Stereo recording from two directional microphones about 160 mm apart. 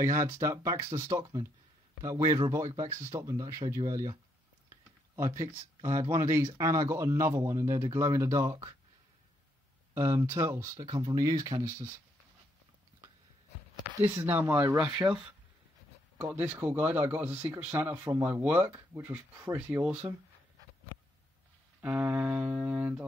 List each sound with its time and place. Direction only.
0.0 s speech: 20° right (ahead or behind)
9.9 s speech: 15° right (ahead or behind)
14.0 s speech: 10° right (ahead or behind)
21.8 s speech: 10° right (ahead or behind)